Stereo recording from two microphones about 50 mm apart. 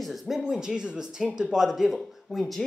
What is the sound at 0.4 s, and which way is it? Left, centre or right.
A man's voice, centre.